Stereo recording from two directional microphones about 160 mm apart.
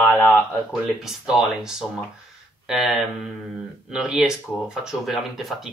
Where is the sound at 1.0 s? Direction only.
Centre (ahead or behind).